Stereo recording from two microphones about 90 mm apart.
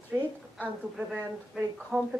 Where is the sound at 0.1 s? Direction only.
25° right (ahead or behind).